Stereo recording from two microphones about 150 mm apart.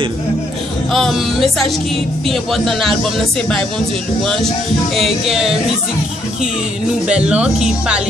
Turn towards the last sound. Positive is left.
turn(degrees=-5)  # may be behind; listen again after turning